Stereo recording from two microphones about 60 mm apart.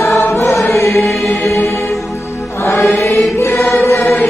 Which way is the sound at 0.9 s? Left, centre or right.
Centre.